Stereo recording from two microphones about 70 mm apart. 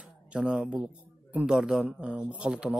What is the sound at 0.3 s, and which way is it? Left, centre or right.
Speech, centre.